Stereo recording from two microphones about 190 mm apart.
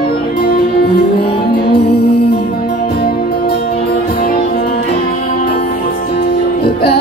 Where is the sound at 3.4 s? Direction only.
55° left (ahead or behind).